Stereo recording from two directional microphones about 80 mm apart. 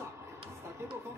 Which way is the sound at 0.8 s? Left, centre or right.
Right.